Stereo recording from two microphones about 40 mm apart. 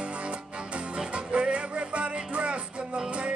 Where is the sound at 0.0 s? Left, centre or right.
Right.